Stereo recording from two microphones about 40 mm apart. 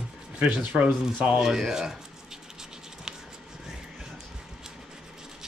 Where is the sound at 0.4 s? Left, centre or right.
Right.